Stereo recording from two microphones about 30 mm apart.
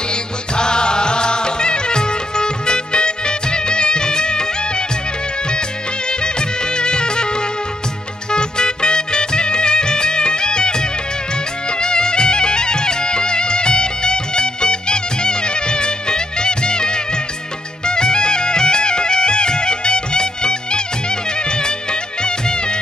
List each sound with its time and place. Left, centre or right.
0.1 s music: left
6.0 s music: left